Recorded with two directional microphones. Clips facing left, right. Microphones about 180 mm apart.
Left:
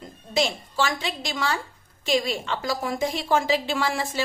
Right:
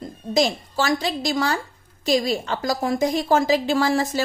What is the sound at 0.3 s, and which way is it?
A woman's voice, 40° right (ahead or behind).